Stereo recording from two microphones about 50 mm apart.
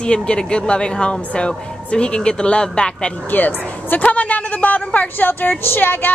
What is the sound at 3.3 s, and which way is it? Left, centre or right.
A woman's voice, left.